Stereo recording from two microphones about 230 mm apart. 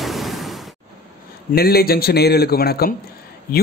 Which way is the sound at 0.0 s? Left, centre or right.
Centre.